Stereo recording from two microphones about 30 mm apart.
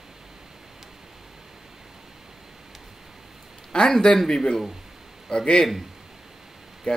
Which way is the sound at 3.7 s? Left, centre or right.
Left.